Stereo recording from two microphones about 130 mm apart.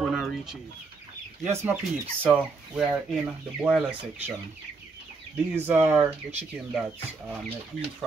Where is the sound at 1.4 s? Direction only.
15° right (ahead or behind).